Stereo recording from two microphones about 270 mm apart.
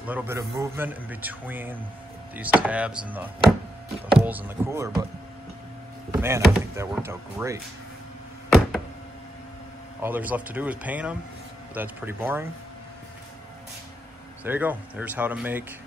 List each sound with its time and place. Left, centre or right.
0.0 s a man's voice: centre
6.1 s a man's voice: centre
8.5 s a sound: centre
10.0 s a man's voice: centre
14.4 s speech: centre